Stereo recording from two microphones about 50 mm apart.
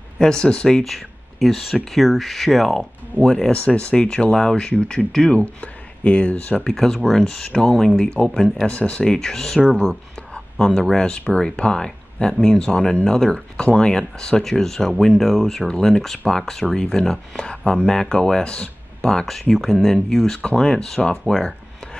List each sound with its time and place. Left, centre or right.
0.2 s speech: centre
6.7 s speech: centre
8.6 s speech: left
9.0 s speech: centre
15.7 s speech: centre
17.3 s speech: left